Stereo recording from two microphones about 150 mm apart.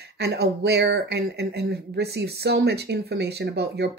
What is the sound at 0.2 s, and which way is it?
Speech, 90° right.